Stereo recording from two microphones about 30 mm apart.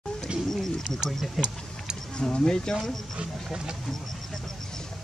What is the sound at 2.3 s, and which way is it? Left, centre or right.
Speech, left.